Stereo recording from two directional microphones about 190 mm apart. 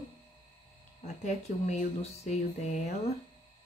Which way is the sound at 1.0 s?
35° left (ahead or behind).